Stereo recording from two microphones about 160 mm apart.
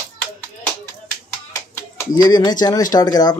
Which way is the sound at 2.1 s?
25° left (ahead or behind).